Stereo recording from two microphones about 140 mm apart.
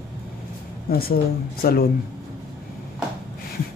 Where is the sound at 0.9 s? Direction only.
90° left.